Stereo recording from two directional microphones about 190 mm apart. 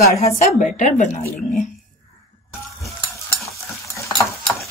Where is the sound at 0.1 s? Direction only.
40° left (ahead or behind).